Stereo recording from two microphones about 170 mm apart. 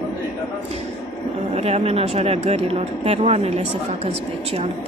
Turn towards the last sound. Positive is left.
turn(degrees=-40)  # may be behind; listen again after turning